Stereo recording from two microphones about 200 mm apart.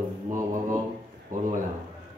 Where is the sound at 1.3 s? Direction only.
40° right (ahead or behind).